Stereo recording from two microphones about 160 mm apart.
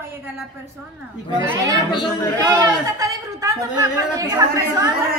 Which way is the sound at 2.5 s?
20° right (ahead or behind).